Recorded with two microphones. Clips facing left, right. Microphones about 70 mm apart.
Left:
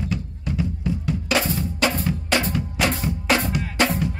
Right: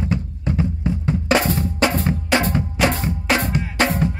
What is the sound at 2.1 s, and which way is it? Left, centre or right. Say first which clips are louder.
Drum: right 4 dB; right.